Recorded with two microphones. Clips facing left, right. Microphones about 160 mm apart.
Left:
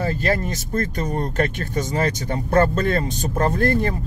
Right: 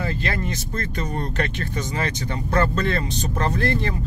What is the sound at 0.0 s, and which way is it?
Speech, 40° left (ahead or behind).